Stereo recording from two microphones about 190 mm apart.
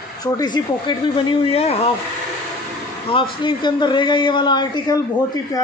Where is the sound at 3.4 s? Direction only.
25° left (ahead or behind).